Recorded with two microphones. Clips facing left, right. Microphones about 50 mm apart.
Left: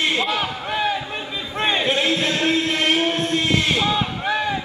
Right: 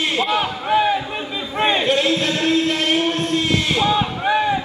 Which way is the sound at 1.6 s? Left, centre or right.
Centre.